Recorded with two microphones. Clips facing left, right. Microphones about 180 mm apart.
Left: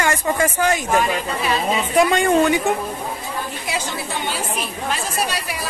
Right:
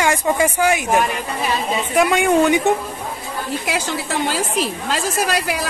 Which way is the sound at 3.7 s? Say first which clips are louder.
Right 3 dB; 90° right.